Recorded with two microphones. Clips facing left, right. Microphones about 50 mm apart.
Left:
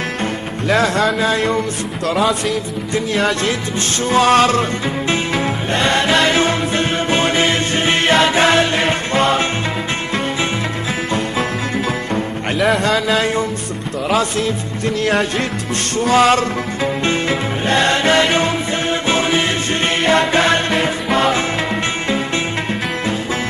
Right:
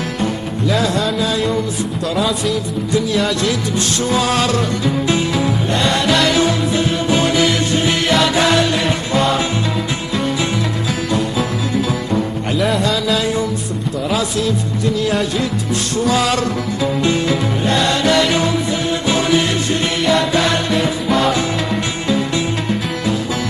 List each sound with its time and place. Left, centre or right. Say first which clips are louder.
0.2 s music: right 2 dB; left
2.1 s music: left 2 dB; centre
2.9 s music: even; left
11.1 s music: right 1 dB; left
12.5 s music: left 2 dB; centre
12.8 s music: left 1 dB; left
14.1 s speech: left 2 dB; left
16.0 s music: left 4 dB; left